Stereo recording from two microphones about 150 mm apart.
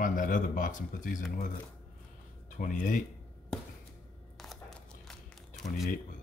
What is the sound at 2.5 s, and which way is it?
Speech, 60° left (ahead or behind).